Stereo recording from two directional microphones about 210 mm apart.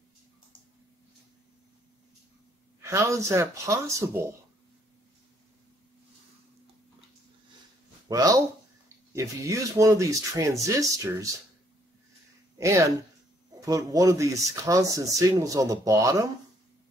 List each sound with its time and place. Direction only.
2.8 s speech: 15° right (ahead or behind)
8.1 s speech: 15° right (ahead or behind)
12.5 s speech: 15° right (ahead or behind)